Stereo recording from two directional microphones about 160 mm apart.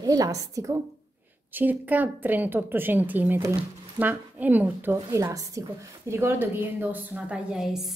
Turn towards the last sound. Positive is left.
turn(degrees=0)  # may be behind; listen again after turning